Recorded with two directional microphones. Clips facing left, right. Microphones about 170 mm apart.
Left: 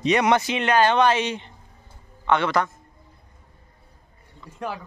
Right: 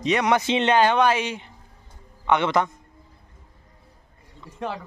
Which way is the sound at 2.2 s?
20° right (ahead or behind).